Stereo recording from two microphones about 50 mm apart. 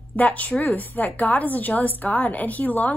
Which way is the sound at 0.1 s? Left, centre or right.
Left.